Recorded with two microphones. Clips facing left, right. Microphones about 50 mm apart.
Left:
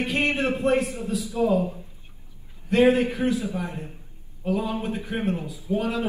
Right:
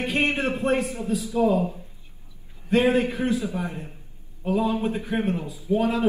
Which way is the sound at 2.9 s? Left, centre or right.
Right.